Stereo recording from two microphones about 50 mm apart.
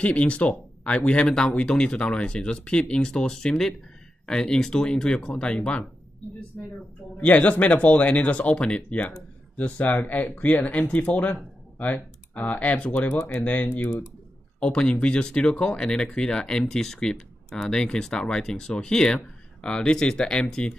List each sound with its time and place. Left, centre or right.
0.0 s speech: left
7.2 s speech: left
14.6 s speech: left